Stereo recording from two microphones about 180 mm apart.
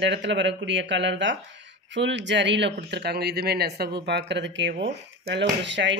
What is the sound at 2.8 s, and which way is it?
Speech, 70° right (ahead or behind).